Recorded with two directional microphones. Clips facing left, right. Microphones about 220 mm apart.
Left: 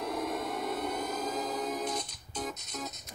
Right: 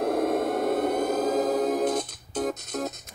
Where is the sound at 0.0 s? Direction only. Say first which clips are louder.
Right 10 dB; 50° right (ahead or behind).